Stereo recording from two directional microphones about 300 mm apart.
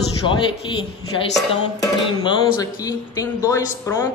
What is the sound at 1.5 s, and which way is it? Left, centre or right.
A woman's voice, centre.